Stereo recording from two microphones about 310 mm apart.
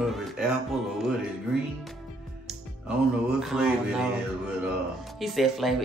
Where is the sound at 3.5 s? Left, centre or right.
Centre.